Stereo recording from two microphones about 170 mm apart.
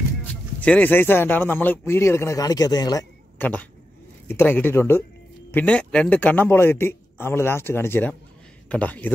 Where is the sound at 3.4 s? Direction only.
10° left (ahead or behind).